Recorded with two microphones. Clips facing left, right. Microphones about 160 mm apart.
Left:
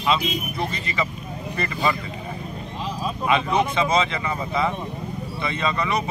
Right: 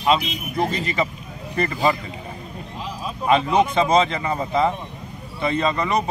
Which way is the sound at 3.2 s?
35° right (ahead or behind).